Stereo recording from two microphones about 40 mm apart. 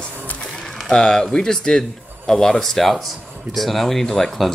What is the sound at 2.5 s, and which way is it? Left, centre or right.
Speech, centre.